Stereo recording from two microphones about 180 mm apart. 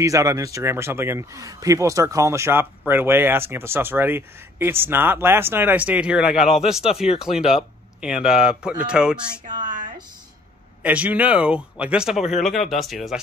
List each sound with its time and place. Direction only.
0.0 s speech: 15° right (ahead or behind)
10.8 s speech: 10° right (ahead or behind)